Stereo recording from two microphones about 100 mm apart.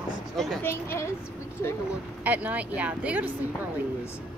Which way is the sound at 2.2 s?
15° right (ahead or behind).